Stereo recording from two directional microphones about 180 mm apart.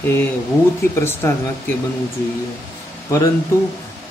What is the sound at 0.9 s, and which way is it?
Speech, 15° left (ahead or behind).